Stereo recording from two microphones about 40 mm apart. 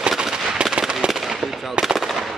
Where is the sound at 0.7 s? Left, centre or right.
Right.